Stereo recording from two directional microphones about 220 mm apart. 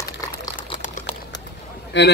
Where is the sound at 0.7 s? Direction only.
30° left (ahead or behind).